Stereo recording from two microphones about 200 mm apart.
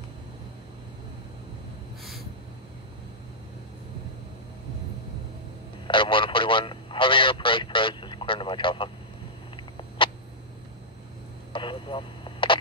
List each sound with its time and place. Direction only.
5.9 s radio: 25° left (ahead or behind)
9.6 s cat: 25° left (ahead or behind)
11.5 s radio: 25° left (ahead or behind)